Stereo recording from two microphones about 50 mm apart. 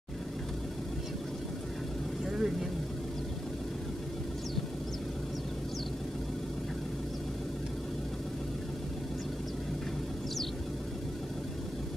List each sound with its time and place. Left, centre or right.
2.2 s vehicle: centre